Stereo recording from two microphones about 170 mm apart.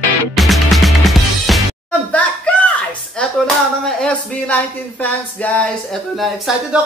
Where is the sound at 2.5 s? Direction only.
5° left (ahead or behind).